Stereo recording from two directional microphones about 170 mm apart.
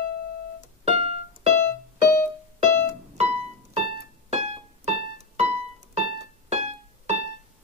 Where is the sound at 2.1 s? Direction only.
15° left (ahead or behind).